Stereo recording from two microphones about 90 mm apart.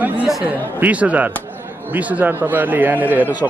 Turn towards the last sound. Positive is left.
turn(degrees=-20)  # may be behind; listen again after turning